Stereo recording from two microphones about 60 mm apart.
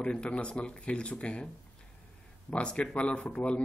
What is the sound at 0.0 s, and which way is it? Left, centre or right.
Speech, centre.